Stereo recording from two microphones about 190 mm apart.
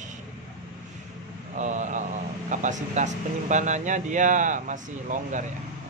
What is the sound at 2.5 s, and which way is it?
Speech, 40° right (ahead or behind).